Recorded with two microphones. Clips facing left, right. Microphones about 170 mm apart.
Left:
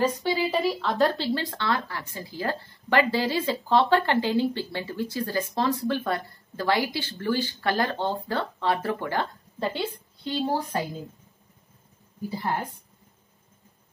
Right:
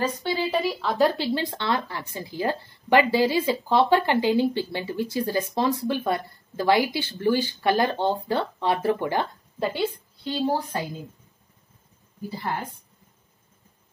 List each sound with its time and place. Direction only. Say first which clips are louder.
0.2 s speech: even; 5° left (ahead or behind); by 9.8 s 15° right (ahead or behind)
10.4 s a woman's voice: right 2 dB; centre (ahead or behind)